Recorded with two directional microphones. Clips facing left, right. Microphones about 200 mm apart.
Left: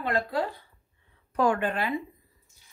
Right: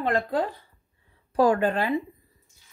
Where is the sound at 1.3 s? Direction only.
35° right (ahead or behind).